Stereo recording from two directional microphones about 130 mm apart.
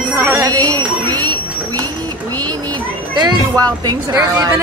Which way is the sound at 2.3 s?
30° right (ahead or behind).